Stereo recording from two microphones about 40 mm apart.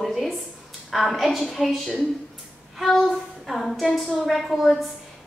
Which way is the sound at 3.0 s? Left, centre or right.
Centre.